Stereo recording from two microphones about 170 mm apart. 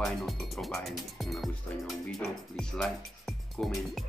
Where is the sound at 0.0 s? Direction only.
Centre (ahead or behind).